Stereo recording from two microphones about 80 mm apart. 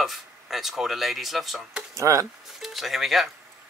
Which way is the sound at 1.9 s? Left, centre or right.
Right.